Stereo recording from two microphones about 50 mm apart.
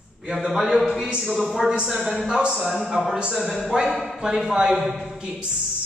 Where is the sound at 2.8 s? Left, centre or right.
Centre.